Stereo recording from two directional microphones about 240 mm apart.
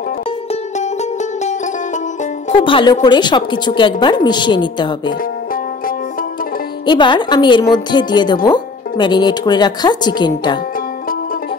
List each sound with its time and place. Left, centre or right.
2.5 s a woman's voice: left
6.9 s a woman's voice: centre